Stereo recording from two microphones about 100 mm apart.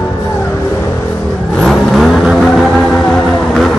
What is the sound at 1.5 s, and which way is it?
Vehicle, 5° left (ahead or behind).